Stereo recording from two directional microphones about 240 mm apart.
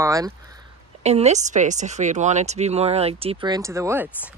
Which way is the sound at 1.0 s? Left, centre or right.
Right.